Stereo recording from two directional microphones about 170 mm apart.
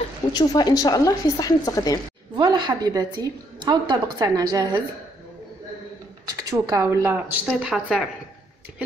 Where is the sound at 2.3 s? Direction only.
25° right (ahead or behind).